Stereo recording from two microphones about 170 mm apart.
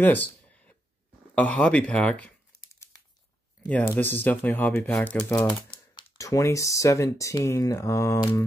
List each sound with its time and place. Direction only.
0.0 s a sound: 10° left (ahead or behind)
1.3 s speech: 5° left (ahead or behind)
3.6 s speech: 10° left (ahead or behind)
5.7 s speech: 25° left (ahead or behind)